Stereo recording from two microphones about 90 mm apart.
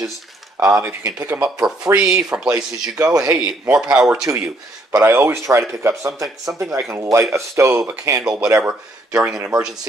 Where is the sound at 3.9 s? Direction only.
15° right (ahead or behind).